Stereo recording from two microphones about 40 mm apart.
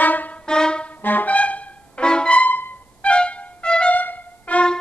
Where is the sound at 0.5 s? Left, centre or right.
Left.